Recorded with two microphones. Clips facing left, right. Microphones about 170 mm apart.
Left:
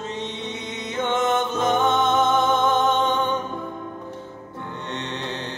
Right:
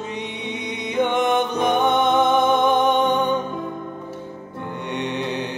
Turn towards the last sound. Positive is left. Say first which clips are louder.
# right 5 dB
turn(degrees=-15)  # may be behind; listen again after turning